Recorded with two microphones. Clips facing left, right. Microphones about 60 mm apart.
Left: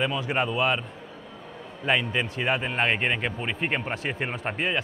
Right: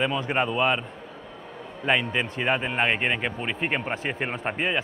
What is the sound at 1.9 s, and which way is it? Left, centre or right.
Speech, centre.